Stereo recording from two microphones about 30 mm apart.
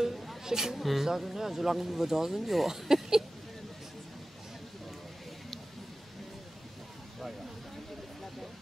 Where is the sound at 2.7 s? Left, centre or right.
Centre.